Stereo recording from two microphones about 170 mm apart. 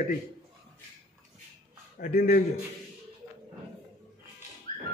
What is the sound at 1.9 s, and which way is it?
Speech, 60° left (ahead or behind).